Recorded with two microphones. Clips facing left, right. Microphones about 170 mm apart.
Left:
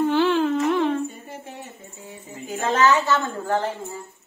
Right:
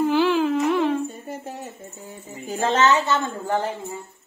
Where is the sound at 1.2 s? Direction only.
40° right (ahead or behind).